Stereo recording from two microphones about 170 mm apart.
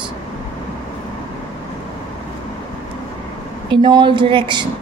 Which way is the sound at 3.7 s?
25° right (ahead or behind).